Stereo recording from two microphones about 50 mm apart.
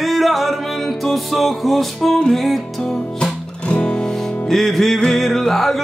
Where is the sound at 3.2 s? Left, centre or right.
Centre.